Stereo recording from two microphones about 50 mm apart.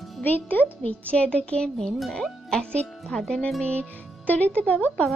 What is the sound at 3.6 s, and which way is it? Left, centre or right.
Speech, left.